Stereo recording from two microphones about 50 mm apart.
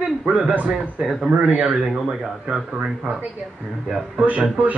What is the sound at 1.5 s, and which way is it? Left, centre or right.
Speech, right.